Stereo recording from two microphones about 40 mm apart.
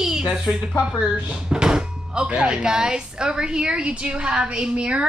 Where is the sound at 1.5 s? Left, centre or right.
Centre.